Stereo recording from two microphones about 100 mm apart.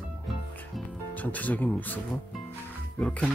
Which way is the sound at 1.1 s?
15° left (ahead or behind).